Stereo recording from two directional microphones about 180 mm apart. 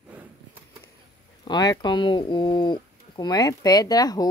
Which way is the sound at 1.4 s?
20° left (ahead or behind).